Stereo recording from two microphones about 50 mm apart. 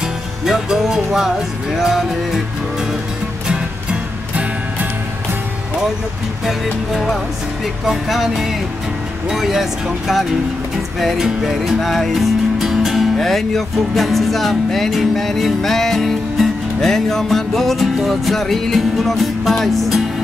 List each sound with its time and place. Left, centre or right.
0.5 s music: centre
3.4 s music: right
6.4 s music: centre